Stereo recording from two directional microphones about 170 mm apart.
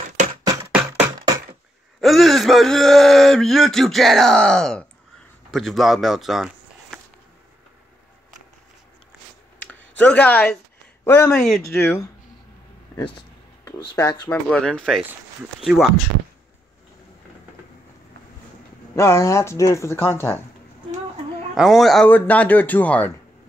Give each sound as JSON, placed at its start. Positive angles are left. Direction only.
{"t": 0.4, "sound": "a sound", "side_deg": -20}
{"t": 2.0, "sound": "speech", "side_deg": 0}
{"t": 9.7, "sound": "speech", "side_deg": 10}
{"t": 11.8, "sound": "speech", "side_deg": 15}
{"t": 14.0, "sound": "speech", "side_deg": 25}
{"t": 14.3, "sound": "speech", "side_deg": 5}
{"t": 18.9, "sound": "speech", "side_deg": 15}
{"t": 21.5, "sound": "speech", "side_deg": 0}